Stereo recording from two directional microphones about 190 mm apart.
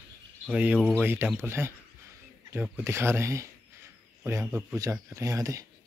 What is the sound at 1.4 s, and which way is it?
Speech, 10° right (ahead or behind).